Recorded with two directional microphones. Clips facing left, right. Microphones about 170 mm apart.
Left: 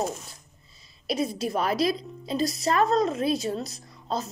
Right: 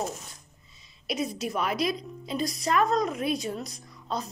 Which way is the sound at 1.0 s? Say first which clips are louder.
Left 3 dB; 30° left (ahead or behind).